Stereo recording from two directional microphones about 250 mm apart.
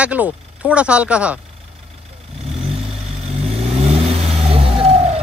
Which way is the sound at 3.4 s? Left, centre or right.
Right.